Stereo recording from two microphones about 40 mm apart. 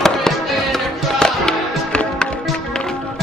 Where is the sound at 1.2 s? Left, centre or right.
Left.